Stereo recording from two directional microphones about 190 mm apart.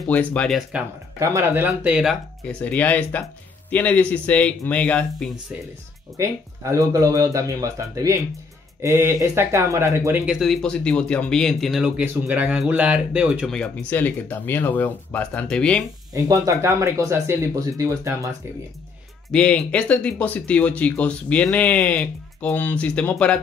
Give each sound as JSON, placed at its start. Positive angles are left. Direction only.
{"t": 0.1, "sound": "speech", "side_deg": 5}
{"t": 1.2, "sound": "speech", "side_deg": -15}
{"t": 6.1, "sound": "speech", "side_deg": -15}
{"t": 10.4, "sound": "speech", "side_deg": 5}
{"t": 13.6, "sound": "speech", "side_deg": 10}
{"t": 16.1, "sound": "speech", "side_deg": -20}
{"t": 19.3, "sound": "speech", "side_deg": 5}